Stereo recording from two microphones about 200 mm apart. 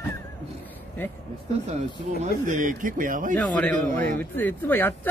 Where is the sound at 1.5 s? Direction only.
30° right (ahead or behind).